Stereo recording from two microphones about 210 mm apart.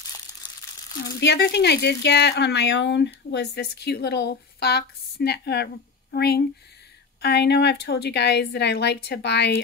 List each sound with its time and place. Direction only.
1.2 s speech: 55° left (ahead or behind)